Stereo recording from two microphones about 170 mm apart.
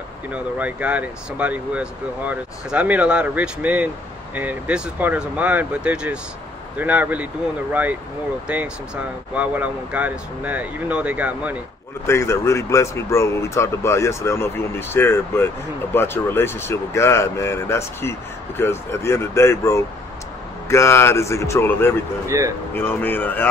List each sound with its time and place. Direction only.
0.3 s speech: 10° right (ahead or behind)
12.1 s speech: 15° left (ahead or behind)
22.3 s speech: 20° right (ahead or behind)
22.8 s speech: 10° left (ahead or behind)